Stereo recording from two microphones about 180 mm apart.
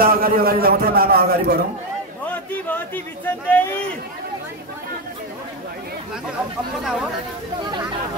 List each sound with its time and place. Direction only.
0.0 s a man's voice: 55° right (ahead or behind)
2.7 s speech: 10° left (ahead or behind)